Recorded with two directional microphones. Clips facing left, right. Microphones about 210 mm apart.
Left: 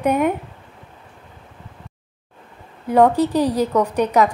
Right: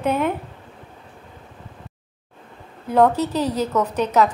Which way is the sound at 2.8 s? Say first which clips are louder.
Left 2 dB; 10° left (ahead or behind).